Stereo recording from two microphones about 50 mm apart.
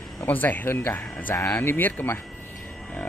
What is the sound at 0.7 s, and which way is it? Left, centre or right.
Speech, left.